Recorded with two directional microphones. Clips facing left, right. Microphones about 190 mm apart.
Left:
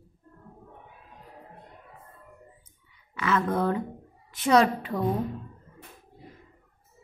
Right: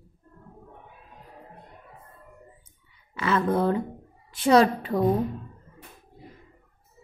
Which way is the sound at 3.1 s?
30° right (ahead or behind).